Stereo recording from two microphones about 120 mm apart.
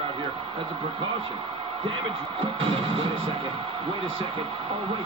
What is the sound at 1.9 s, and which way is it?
Speech, 50° right (ahead or behind).